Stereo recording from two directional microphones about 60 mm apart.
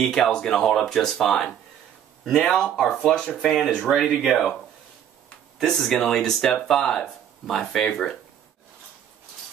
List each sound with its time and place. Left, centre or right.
0.0 s speech: centre
5.6 s speech: centre